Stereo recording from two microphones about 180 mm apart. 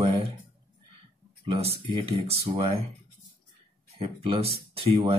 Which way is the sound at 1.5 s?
30° right (ahead or behind).